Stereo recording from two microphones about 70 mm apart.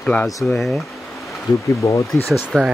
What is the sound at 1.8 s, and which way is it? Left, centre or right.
Speech, left.